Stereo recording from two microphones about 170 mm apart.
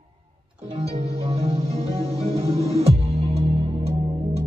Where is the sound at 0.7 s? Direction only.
35° right (ahead or behind).